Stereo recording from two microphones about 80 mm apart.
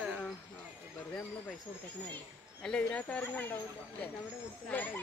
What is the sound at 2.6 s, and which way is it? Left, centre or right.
Speech, centre.